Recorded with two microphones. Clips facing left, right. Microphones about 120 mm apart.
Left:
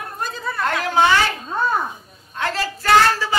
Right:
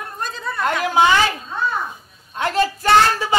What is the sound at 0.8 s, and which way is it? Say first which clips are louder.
Speech: right 1 dB; 15° right (ahead or behind).